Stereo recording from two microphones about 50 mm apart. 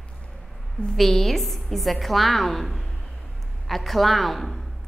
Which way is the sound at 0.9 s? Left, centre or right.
Centre.